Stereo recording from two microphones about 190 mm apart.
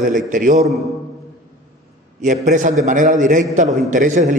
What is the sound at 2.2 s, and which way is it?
A man's voice, 40° right (ahead or behind).